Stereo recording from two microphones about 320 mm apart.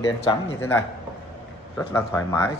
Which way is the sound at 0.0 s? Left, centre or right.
Centre.